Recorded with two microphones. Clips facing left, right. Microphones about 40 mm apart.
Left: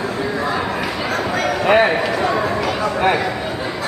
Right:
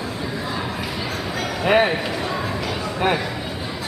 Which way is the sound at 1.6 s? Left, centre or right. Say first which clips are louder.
Left 3 dB; centre.